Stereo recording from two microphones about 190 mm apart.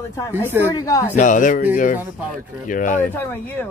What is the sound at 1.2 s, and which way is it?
Speech, 45° left (ahead or behind).